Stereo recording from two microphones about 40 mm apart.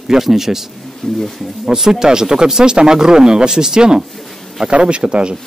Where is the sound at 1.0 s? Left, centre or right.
Centre.